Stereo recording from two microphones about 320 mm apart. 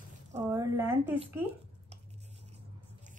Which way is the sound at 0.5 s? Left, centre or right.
Centre.